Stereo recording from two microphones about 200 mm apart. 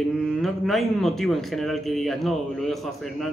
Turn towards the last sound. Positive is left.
turn(degrees=0)  # may be behind; listen again after turning